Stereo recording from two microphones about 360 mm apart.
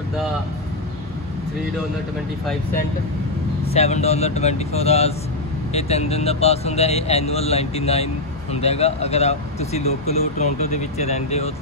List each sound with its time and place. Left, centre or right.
3.7 s speech: centre